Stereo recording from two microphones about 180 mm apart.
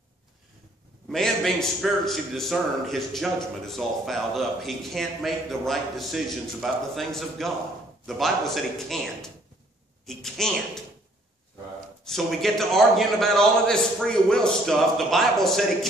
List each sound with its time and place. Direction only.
1.0 s a man's voice: centre (ahead or behind)
12.0 s a man's voice: centre (ahead or behind)